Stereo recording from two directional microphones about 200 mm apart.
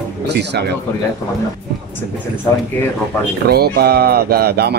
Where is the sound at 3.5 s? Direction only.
50° right (ahead or behind).